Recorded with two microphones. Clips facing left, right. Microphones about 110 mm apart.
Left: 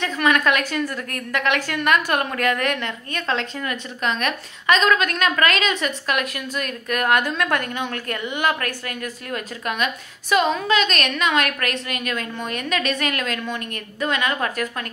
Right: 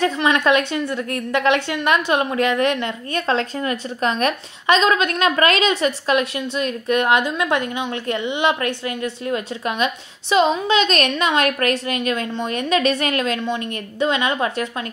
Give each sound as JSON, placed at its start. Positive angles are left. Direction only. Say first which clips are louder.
{"t": 0.0, "sound": "a woman's voice", "louder": "right 2 dB", "side_deg": -25}